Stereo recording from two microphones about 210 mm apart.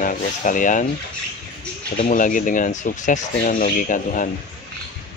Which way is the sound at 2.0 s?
40° left (ahead or behind).